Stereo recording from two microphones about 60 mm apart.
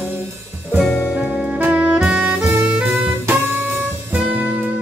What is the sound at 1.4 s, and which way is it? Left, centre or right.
Saxophone, right.